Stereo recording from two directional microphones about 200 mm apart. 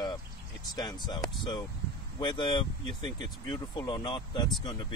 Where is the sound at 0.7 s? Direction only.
20° left (ahead or behind).